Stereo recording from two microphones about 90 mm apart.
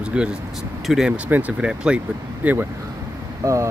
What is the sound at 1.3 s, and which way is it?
Speech, 15° right (ahead or behind).